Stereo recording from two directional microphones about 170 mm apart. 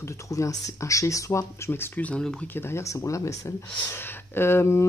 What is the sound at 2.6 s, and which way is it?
Speech, 15° left (ahead or behind).